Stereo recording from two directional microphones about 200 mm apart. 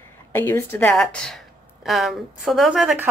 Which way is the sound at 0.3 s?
10° left (ahead or behind).